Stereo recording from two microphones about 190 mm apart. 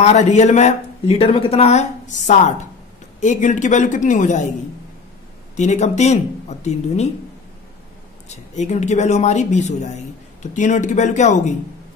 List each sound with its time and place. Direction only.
0.0 s a man's voice: 35° left (ahead or behind)
5.6 s a man's voice: 35° left (ahead or behind)
8.3 s a man's voice: 40° left (ahead or behind)